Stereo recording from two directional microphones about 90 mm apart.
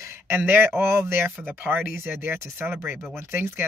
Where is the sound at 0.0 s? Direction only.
30° right (ahead or behind).